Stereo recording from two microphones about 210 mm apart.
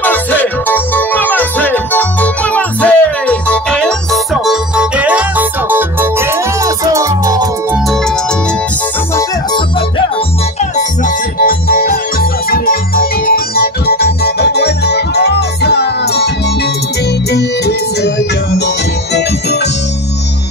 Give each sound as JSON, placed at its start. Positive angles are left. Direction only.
{"t": 0.0, "sound": "music", "side_deg": 10}
{"t": 7.7, "sound": "music", "side_deg": 0}
{"t": 9.1, "sound": "music", "side_deg": 20}
{"t": 10.6, "sound": "music", "side_deg": 35}
{"t": 17.3, "sound": "music", "side_deg": 50}
{"t": 19.1, "sound": "music", "side_deg": 55}